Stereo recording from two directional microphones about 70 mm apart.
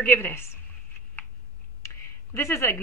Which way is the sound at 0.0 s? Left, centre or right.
Left.